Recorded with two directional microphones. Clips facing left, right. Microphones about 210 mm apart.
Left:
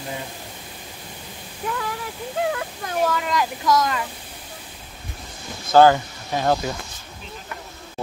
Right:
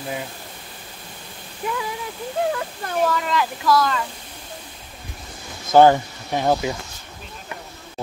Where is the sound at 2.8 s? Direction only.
5° left (ahead or behind).